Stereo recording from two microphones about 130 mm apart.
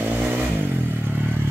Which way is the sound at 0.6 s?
15° right (ahead or behind).